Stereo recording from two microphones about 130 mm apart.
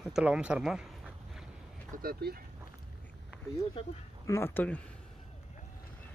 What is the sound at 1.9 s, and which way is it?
Speech, 90° right.